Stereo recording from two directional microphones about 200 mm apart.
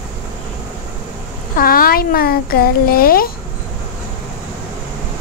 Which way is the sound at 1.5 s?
45° left (ahead or behind).